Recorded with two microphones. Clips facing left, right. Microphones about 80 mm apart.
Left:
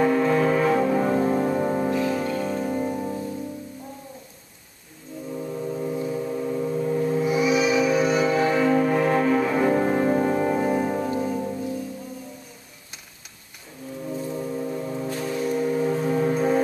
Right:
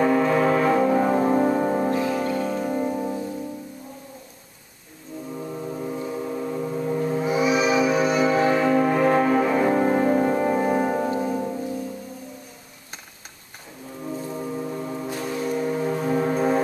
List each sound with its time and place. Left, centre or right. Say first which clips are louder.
0.0 s music: right 1 dB; centre
5.3 s foghorn: left 2 dB; centre
7.2 s a sound: right 2 dB; right
7.9 s music: right 1 dB; centre
14.1 s foghorn: left 1 dB; centre
16.3 s music: even; centre